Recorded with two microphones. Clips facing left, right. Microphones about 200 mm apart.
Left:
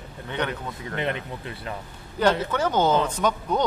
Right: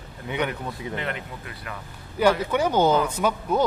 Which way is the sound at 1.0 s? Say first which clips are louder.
Left 3 dB; 25° left (ahead or behind).